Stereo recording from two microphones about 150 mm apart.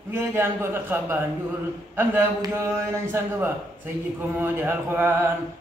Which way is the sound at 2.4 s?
20° right (ahead or behind).